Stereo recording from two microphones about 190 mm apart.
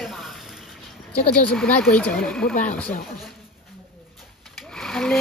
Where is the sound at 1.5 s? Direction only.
5° left (ahead or behind).